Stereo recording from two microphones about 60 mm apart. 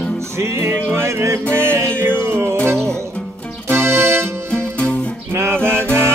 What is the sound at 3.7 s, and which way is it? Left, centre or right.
Music, right.